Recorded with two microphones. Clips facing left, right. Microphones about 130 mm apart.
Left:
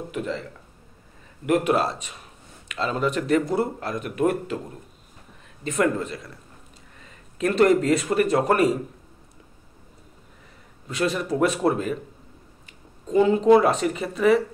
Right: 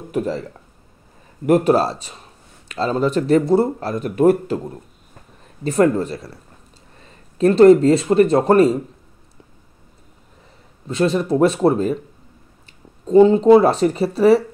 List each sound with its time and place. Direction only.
0.1 s speech: 40° right (ahead or behind)
10.9 s speech: 30° right (ahead or behind)